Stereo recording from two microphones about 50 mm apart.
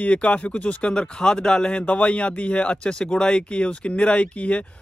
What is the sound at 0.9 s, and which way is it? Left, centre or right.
Speech, centre.